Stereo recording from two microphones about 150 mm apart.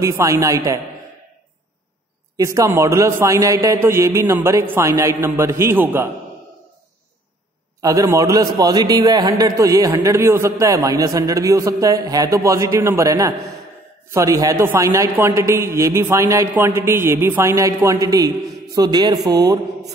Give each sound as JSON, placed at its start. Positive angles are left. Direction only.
{"t": 0.0, "sound": "a man's voice", "side_deg": -20}
{"t": 2.3, "sound": "a man's voice", "side_deg": -20}
{"t": 7.8, "sound": "a man's voice", "side_deg": -20}